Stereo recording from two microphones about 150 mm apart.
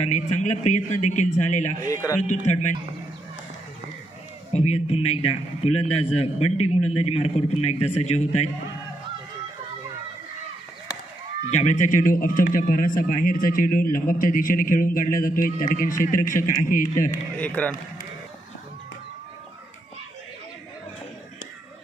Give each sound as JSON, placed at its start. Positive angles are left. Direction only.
{"t": 0.0, "sound": "a man's voice", "side_deg": 50}
{"t": 1.9, "sound": "speech", "side_deg": 20}
{"t": 2.4, "sound": "a man's voice", "side_deg": 50}
{"t": 4.5, "sound": "a man's voice", "side_deg": 45}
{"t": 11.5, "sound": "a man's voice", "side_deg": 55}
{"t": 17.6, "sound": "a man's voice", "side_deg": 10}